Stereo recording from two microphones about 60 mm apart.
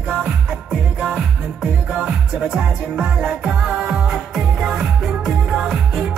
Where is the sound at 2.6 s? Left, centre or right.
Centre.